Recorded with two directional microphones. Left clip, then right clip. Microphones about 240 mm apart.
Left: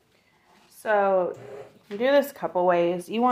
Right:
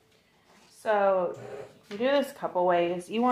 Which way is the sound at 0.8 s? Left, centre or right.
Left.